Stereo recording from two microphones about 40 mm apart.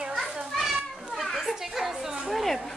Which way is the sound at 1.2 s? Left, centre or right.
Centre.